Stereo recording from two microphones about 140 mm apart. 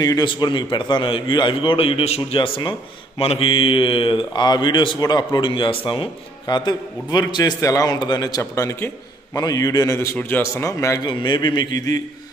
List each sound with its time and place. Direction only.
0.0 s a man's voice: 30° left (ahead or behind)
11.1 s speech: 35° left (ahead or behind)